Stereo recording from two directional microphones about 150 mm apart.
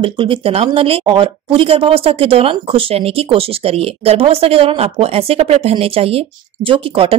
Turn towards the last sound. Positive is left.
turn(degrees=-40)  # may be behind; listen again after turning